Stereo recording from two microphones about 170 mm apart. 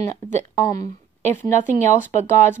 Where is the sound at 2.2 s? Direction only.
15° left (ahead or behind).